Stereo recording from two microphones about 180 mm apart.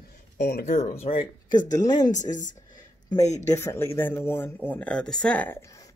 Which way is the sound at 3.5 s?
15° left (ahead or behind).